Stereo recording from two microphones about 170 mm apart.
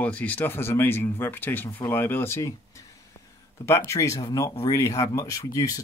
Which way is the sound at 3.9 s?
20° left (ahead or behind).